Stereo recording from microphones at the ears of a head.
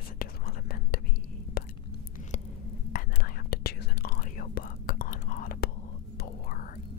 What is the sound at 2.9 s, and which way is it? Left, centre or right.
Whispering, left.